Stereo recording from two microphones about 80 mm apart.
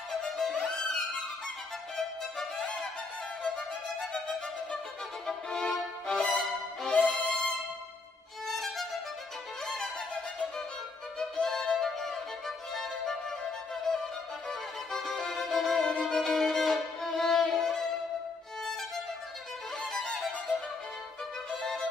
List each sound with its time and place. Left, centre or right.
0.1 s music: centre
2.0 s music: centre
5.2 s music: centre
6.9 s music: centre
8.5 s violin: centre
11.1 s violin: centre
19.8 s music: centre
21.5 s violin: centre